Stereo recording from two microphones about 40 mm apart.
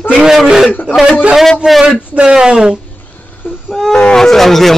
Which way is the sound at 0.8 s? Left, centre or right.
Centre.